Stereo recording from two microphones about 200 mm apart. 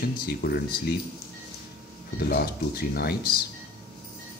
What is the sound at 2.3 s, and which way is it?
Speech, 50° left (ahead or behind).